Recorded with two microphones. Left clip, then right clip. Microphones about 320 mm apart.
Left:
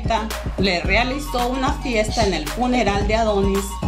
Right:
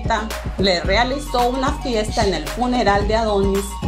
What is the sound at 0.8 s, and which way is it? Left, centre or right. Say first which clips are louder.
Speech: right 2 dB; centre.